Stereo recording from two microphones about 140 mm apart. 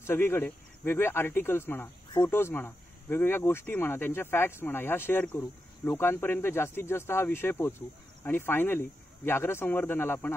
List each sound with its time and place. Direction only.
0.0 s speech: 15° left (ahead or behind)